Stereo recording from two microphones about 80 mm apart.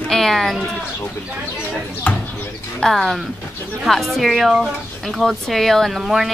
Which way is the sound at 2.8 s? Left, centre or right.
Centre.